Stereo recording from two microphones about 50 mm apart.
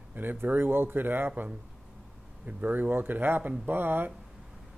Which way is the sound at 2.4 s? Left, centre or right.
Right.